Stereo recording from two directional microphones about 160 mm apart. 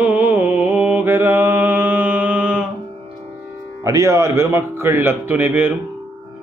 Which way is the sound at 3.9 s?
20° right (ahead or behind).